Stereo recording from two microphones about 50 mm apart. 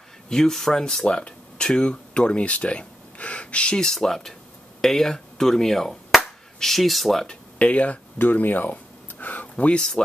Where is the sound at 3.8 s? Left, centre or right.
Centre.